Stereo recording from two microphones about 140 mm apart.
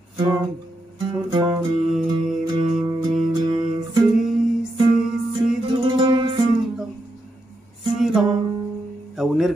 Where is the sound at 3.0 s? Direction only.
35° right (ahead or behind).